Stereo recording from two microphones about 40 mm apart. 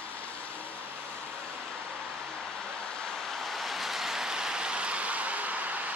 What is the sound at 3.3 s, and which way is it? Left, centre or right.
Vehicle, centre.